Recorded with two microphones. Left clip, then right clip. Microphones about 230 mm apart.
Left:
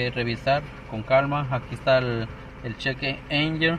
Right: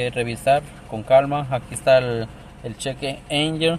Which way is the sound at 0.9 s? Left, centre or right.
Centre.